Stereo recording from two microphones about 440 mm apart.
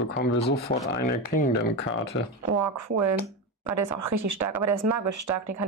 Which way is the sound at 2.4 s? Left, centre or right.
Right.